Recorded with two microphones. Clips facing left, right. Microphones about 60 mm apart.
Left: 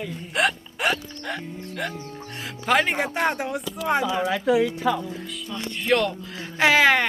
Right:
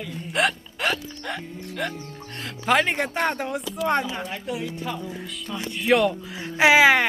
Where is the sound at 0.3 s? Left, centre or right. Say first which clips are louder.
Even; centre.